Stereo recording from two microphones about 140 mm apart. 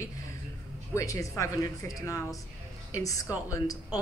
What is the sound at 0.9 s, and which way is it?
Speech, 25° left (ahead or behind).